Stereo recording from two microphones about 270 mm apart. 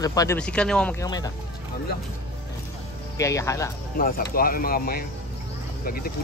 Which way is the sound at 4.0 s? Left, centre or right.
Left.